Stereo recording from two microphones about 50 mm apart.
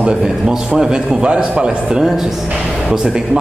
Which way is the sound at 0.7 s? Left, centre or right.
Centre.